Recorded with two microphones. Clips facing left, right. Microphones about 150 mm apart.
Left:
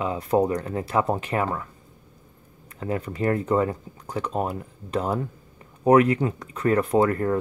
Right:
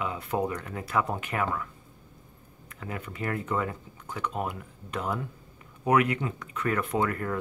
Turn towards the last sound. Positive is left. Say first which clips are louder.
# left 8 dB
turn(degrees=35)  # may be behind; listen again after turning